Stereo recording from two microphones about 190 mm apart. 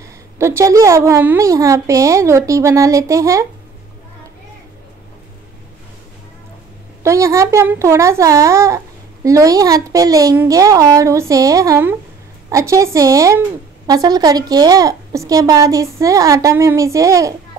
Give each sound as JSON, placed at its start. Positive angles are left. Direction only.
{"t": 0.4, "sound": "a child's voice", "side_deg": -15}
{"t": 7.0, "sound": "a child's voice", "side_deg": -15}